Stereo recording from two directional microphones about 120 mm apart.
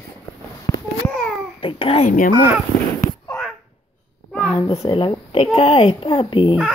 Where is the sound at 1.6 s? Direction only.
50° left (ahead or behind).